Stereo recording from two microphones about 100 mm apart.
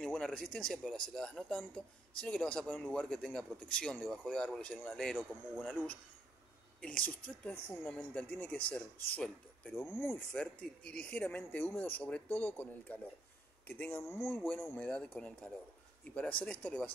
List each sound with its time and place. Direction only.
0.0 s speech: 5° left (ahead or behind)
3.0 s speech: centre (ahead or behind)
6.8 s speech: 10° left (ahead or behind)
10.3 s speech: 10° left (ahead or behind)